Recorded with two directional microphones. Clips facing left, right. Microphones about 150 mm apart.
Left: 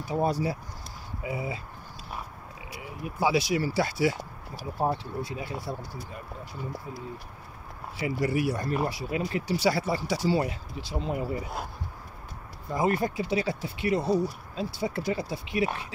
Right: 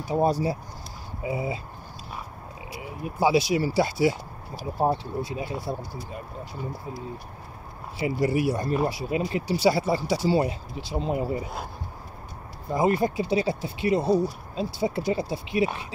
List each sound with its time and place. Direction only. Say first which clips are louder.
0.1 s speech: right 4 dB; 35° right (ahead or behind)
3.0 s speech: right 4 dB; 25° right (ahead or behind)
8.0 s speech: right 3 dB; 25° right (ahead or behind)
12.7 s speech: right 3 dB; 25° right (ahead or behind)